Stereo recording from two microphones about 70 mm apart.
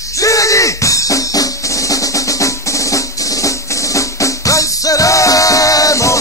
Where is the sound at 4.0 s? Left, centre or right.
Left.